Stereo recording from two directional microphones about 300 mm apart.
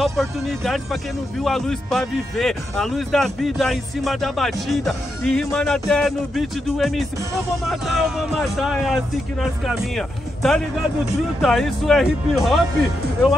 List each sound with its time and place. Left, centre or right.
0.0 s speech: centre